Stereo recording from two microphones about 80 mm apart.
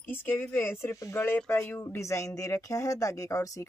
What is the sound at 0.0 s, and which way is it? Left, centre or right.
Speech, left.